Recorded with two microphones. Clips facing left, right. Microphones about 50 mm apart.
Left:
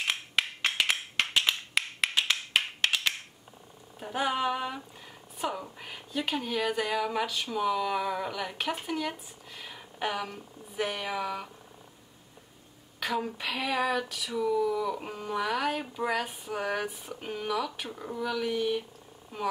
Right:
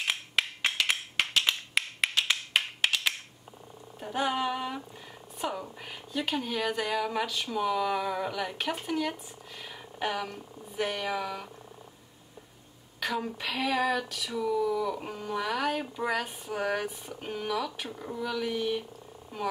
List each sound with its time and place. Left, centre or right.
0.0 s a sound: centre
2.5 s finger snapping: centre
4.0 s speech: centre
13.0 s speech: centre